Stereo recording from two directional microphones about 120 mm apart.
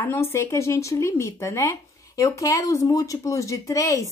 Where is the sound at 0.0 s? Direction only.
20° left (ahead or behind).